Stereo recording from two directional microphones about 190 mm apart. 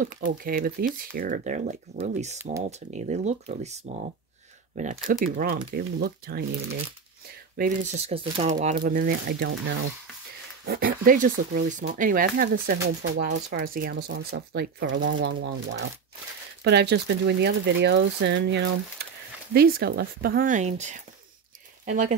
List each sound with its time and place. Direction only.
0.0 s speech: 45° right (ahead or behind)
4.7 s speech: 40° right (ahead or behind)
5.3 s speech: 50° right (ahead or behind)
7.5 s speech: 45° right (ahead or behind)
12.8 s speech: 65° right (ahead or behind)
19.5 s speech: 55° right (ahead or behind)